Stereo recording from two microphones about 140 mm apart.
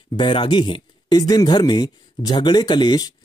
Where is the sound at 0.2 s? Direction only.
35° left (ahead or behind).